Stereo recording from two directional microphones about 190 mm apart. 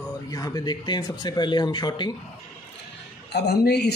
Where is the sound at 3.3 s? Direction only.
60° left (ahead or behind).